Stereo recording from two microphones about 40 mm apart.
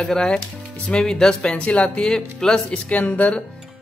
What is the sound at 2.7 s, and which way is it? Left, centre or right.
Speech, left.